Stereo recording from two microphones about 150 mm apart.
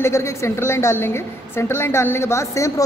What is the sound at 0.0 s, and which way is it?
A woman's voice, 20° left (ahead or behind).